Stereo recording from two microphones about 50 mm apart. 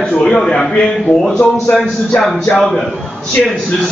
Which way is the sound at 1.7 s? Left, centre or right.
Centre.